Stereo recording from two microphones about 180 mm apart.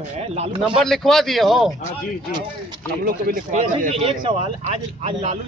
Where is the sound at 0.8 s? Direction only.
Centre (ahead or behind).